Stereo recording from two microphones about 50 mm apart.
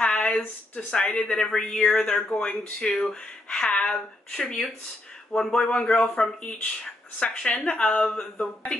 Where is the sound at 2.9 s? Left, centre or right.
Centre.